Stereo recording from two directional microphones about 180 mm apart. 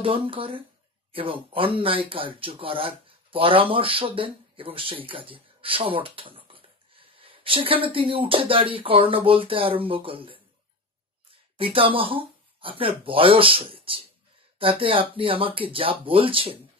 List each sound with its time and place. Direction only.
0.0 s speech: 30° right (ahead or behind)
11.5 s speech: 30° right (ahead or behind)